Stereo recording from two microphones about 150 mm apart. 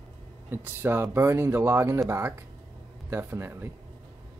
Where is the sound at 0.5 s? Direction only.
15° right (ahead or behind).